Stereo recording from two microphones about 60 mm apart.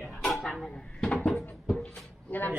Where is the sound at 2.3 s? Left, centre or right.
Left.